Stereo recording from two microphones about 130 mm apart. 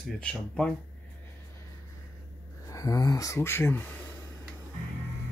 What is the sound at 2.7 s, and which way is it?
Speech, 25° left (ahead or behind).